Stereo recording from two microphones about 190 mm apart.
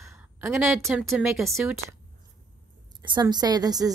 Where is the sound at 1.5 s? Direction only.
15° right (ahead or behind).